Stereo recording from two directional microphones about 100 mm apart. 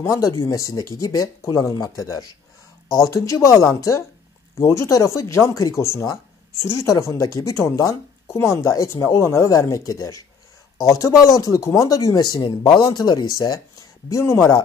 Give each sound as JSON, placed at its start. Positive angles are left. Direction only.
{"t": 0.4, "sound": "speech", "side_deg": 35}